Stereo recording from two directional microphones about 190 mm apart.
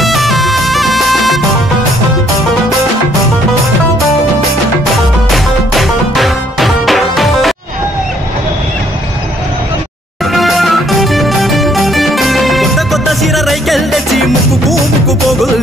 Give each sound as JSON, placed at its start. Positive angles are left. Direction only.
{"t": 0.0, "sound": "music", "side_deg": 0}
{"t": 5.3, "sound": "music", "side_deg": 0}
{"t": 10.3, "sound": "music", "side_deg": 0}